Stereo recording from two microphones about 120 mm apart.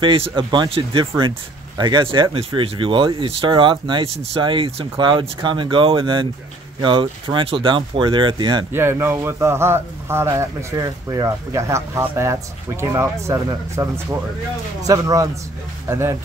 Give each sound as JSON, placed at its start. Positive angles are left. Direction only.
{"t": 0.0, "sound": "speech", "side_deg": -45}
{"t": 8.7, "sound": "a man's voice", "side_deg": -20}